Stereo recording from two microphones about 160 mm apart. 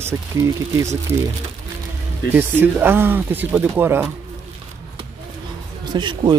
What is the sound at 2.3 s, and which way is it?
Speech, 15° right (ahead or behind).